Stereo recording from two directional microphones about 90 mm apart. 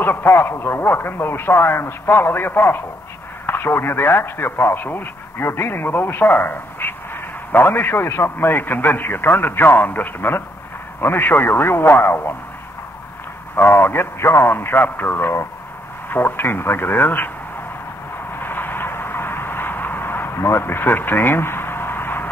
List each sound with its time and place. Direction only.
0.0 s a man's voice: 25° left (ahead or behind)
13.6 s a man's voice: 25° left (ahead or behind)
18.4 s a sound: 20° left (ahead or behind)